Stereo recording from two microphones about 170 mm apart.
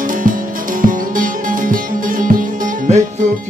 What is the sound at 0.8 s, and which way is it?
Music, 50° right (ahead or behind).